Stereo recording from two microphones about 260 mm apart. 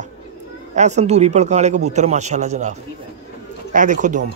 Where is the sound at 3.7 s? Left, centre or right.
Right.